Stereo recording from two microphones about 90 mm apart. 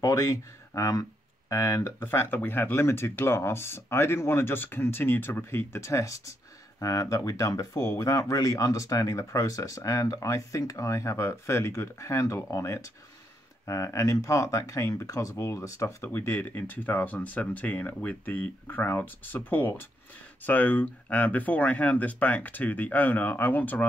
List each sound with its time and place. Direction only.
0.0 s speech: 35° left (ahead or behind)
2.0 s speech: 25° left (ahead or behind)